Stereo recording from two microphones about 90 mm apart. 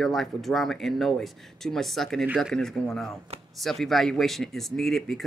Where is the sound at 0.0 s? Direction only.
Centre (ahead or behind).